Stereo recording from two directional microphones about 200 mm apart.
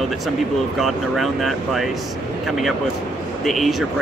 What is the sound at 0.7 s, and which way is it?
Speech, centre (ahead or behind).